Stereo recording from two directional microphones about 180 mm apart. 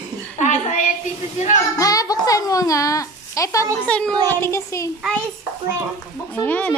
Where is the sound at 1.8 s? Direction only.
20° left (ahead or behind).